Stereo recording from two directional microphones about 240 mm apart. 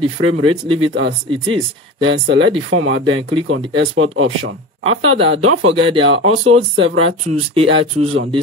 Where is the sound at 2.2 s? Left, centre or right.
Right.